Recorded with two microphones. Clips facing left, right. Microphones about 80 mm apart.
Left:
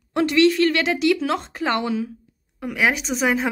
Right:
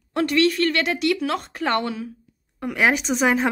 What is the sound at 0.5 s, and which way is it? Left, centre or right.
A woman's voice, left.